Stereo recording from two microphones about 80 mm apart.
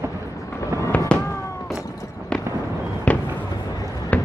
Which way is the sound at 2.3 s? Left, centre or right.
Centre.